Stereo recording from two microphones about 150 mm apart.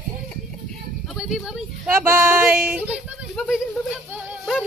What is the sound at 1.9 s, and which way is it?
Female singing, 15° right (ahead or behind).